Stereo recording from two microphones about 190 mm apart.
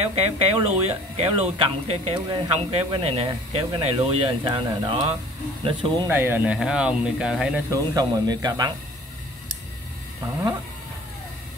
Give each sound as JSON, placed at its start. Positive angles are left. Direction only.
{"t": 0.0, "sound": "speech", "side_deg": -30}
{"t": 6.0, "sound": "speech", "side_deg": -10}
{"t": 7.7, "sound": "speech", "side_deg": -20}